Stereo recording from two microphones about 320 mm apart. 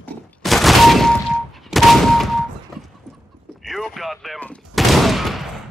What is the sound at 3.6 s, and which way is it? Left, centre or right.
Fusillade, centre.